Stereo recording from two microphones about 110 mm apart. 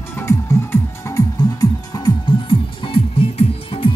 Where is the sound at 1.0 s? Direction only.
35° left (ahead or behind).